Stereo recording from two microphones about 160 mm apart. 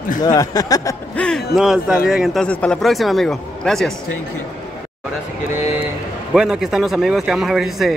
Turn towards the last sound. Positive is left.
turn(degrees=0)  # may be behind; listen again after turning